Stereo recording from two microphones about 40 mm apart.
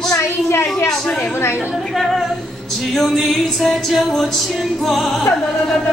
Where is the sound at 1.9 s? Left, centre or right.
Centre.